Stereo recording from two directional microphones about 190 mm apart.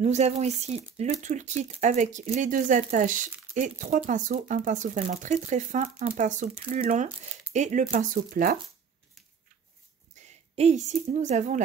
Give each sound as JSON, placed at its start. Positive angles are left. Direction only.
{"t": 0.0, "sound": "speech", "side_deg": -35}
{"t": 10.1, "sound": "speech", "side_deg": -35}